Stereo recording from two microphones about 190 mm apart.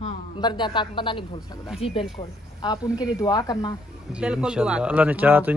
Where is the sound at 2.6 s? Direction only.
20° left (ahead or behind).